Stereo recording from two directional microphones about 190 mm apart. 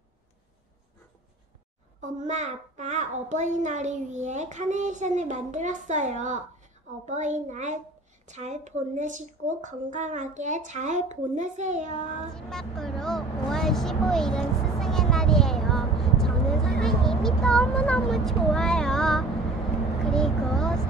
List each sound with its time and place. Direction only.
2.0 s a child's voice: 40° right (ahead or behind)
12.4 s vehicle: centre (ahead or behind)
20.1 s a child's voice: 5° left (ahead or behind)